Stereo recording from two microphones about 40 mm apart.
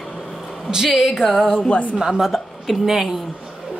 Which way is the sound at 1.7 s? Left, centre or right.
Left.